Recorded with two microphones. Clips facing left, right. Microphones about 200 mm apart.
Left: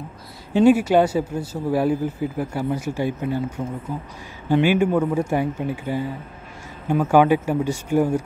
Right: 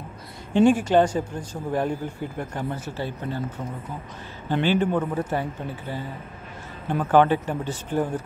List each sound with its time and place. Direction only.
0.5 s speech: 5° left (ahead or behind)